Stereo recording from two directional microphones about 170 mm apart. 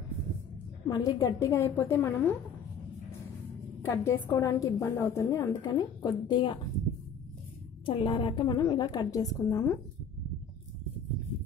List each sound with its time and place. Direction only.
0.8 s a woman's voice: 20° left (ahead or behind)
3.8 s a woman's voice: 15° left (ahead or behind)
7.8 s a woman's voice: 30° left (ahead or behind)